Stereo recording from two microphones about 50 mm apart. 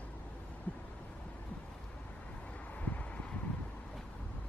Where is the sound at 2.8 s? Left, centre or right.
Left.